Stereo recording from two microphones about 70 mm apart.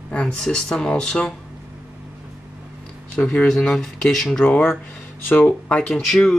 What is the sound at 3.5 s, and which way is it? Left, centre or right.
Speech, centre.